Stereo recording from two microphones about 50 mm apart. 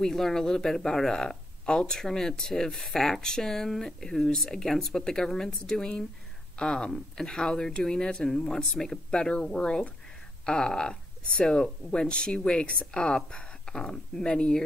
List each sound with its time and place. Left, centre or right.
0.0 s speech: centre
8.9 s speech: centre